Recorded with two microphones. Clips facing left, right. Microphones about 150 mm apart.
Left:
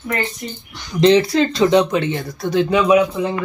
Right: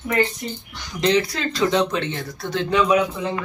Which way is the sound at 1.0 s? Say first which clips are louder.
Left 7 dB; 30° left (ahead or behind).